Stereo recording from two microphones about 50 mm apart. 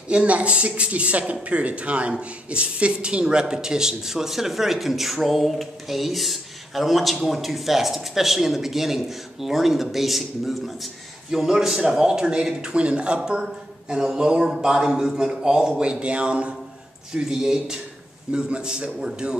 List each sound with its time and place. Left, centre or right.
0.1 s speech: right
17.1 s speech: centre